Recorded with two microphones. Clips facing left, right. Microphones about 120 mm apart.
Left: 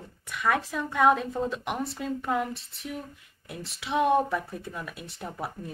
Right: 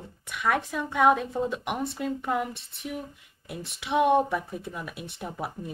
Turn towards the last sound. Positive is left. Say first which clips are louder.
# right 1 dB
turn(degrees=-5)  # may be behind; listen again after turning